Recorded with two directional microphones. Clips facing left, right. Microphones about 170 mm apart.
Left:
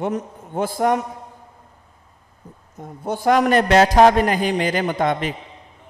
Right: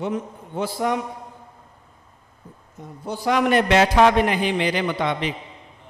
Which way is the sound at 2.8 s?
50° left (ahead or behind).